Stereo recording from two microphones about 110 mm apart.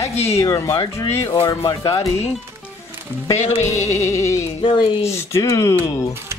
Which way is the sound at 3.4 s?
90° left.